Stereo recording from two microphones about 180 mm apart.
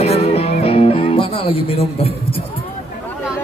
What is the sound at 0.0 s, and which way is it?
Music, 35° left (ahead or behind).